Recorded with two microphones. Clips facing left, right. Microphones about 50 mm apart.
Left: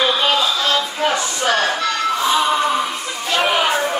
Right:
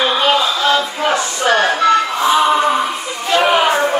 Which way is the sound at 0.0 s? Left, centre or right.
Centre.